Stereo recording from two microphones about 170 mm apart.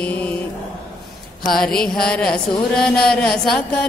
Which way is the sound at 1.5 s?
5° left (ahead or behind).